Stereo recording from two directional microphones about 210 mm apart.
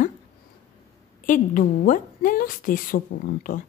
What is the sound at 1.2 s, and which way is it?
A woman's voice, 40° left (ahead or behind).